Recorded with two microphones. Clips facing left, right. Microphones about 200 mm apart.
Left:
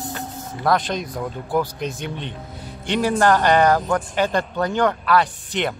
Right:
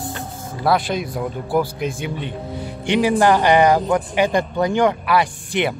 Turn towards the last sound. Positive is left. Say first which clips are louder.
# right 3 dB
turn(degrees=-10)  # may be behind; listen again after turning